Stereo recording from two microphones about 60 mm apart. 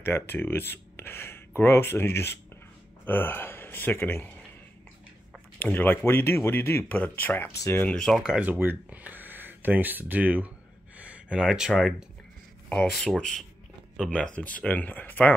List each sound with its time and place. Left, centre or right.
0.0 s speech: left
5.6 s speech: left
6.9 s speech: left
7.9 s speech: centre
8.2 s speech: centre
8.5 s speech: right
11.0 s a sound: right
11.4 s speech: centre
12.9 s speech: centre
14.1 s speech: centre